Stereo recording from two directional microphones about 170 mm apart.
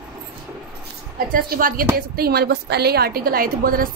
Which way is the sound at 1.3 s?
55° right (ahead or behind).